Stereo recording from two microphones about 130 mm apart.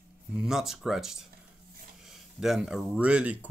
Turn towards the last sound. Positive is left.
turn(degrees=-10)  # may be behind; listen again after turning